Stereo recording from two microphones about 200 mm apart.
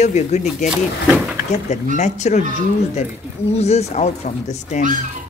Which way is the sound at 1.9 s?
35° left (ahead or behind).